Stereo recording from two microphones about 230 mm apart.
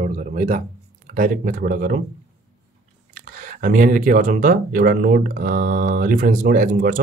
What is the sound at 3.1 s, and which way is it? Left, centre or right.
Speech, right.